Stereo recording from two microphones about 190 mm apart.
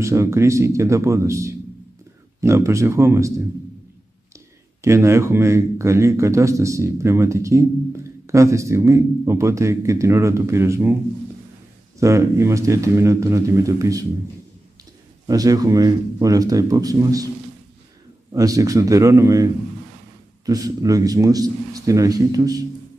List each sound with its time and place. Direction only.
0.0 s speech: 15° right (ahead or behind)
4.8 s speech: 15° right (ahead or behind)
12.0 s speech: 15° right (ahead or behind)
15.2 s a man's voice: 20° right (ahead or behind)
18.3 s a man's voice: 15° right (ahead or behind)